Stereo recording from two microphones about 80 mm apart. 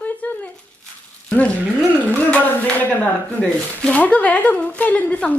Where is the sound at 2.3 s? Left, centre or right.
Left.